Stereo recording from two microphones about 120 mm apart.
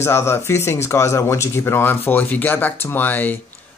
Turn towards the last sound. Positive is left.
turn(degrees=15)  # may be behind; listen again after turning